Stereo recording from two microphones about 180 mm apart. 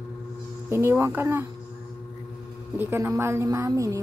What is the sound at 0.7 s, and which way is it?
Speech, 15° right (ahead or behind).